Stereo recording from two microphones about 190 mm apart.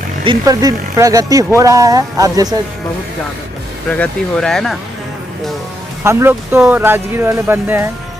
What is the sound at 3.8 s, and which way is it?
Speech, 5° left (ahead or behind).